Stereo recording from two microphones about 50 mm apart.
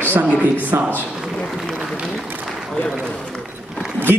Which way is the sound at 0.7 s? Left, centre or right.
Right.